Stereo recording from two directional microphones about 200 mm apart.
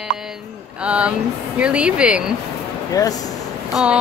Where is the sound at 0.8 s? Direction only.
5° right (ahead or behind).